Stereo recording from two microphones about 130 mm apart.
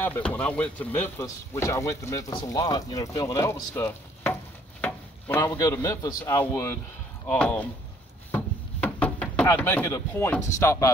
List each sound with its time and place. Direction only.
0.0 s speech: 15° left (ahead or behind)
4.8 s stir: 15° left (ahead or behind)
5.6 s speech: 25° left (ahead or behind); by 7.6 s 10° left (ahead or behind)
8.3 s knock: 10° left (ahead or behind)
9.6 s speech: 15° left (ahead or behind)